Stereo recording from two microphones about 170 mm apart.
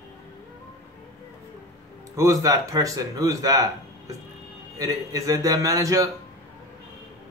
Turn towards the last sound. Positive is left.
turn(degrees=-20)  # may be behind; listen again after turning